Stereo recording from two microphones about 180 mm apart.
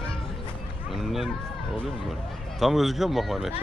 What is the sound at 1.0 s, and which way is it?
Speech, centre (ahead or behind).